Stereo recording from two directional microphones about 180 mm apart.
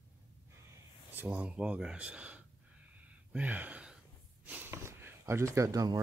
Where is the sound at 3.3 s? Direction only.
10° right (ahead or behind).